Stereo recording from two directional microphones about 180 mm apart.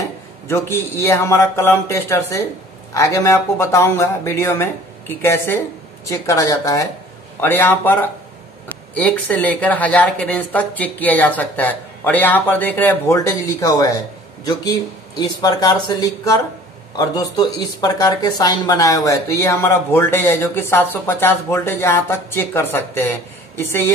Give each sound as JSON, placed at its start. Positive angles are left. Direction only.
{"t": 0.0, "sound": "speech", "side_deg": 15}
{"t": 15.1, "sound": "speech", "side_deg": 20}